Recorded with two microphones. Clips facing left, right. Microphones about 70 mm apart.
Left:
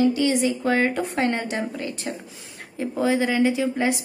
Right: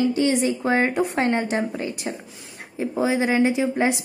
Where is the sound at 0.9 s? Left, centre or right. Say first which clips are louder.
Right 2 dB; centre.